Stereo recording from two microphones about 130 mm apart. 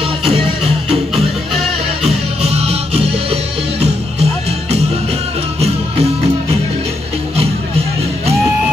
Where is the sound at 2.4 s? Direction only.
55° right (ahead or behind).